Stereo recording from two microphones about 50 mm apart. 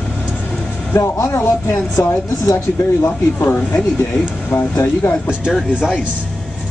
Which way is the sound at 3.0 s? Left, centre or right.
Left.